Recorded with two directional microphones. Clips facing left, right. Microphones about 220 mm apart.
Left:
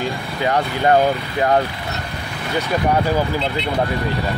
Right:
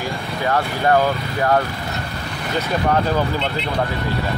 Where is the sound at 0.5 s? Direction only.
20° left (ahead or behind).